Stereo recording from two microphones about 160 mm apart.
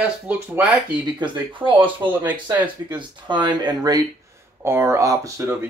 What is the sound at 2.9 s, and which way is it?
Speech, 30° right (ahead or behind).